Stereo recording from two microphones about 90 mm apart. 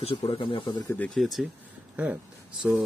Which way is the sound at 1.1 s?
Centre (ahead or behind).